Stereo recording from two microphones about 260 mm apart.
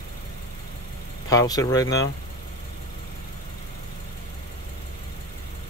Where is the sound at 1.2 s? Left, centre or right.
Centre.